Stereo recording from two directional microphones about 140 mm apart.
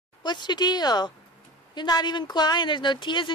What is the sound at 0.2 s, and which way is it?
Speech, 30° left (ahead or behind).